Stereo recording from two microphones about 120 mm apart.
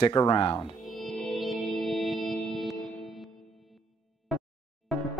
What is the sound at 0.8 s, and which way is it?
Music, centre (ahead or behind).